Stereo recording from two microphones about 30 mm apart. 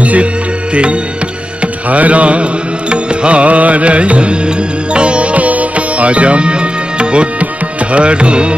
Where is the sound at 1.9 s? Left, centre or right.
Right.